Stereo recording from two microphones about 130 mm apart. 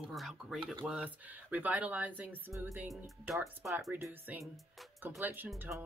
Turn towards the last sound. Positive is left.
turn(degrees=-20)  # may be behind; listen again after turning